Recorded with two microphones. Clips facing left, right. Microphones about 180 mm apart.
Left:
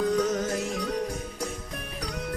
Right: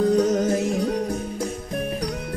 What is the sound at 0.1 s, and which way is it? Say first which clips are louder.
Music: right 6 dB; 35° right (ahead or behind).